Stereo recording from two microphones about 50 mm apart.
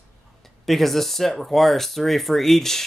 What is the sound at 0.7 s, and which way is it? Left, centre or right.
Speech, centre.